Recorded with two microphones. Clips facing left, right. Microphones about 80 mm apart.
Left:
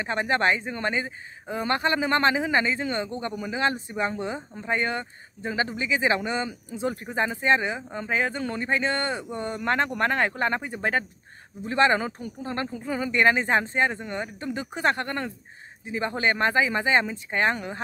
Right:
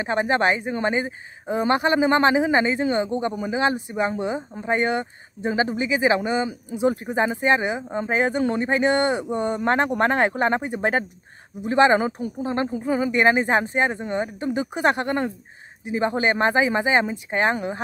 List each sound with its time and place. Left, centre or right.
0.0 s speech: centre